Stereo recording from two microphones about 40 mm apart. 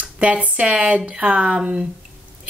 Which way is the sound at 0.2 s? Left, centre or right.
Right.